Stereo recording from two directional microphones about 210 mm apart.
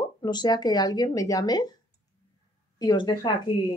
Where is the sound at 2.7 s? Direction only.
20° left (ahead or behind).